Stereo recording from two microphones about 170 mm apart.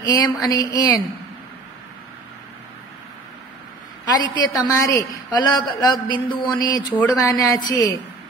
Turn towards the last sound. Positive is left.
turn(degrees=20)  # may be behind; listen again after turning